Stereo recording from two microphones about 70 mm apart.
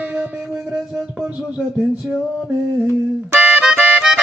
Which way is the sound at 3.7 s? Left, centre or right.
Right.